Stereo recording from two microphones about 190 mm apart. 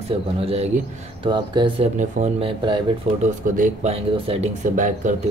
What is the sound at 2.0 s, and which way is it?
Speech, 35° right (ahead or behind).